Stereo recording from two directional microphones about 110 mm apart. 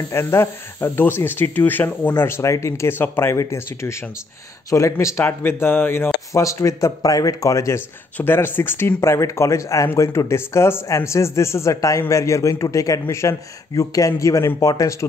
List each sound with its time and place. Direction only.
0.1 s speech: 25° left (ahead or behind)